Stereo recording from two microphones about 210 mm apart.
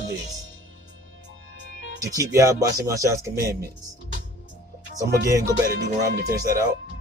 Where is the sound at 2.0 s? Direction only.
15° right (ahead or behind).